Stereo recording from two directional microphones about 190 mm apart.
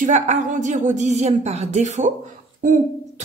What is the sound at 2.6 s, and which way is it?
Cough, 45° right (ahead or behind).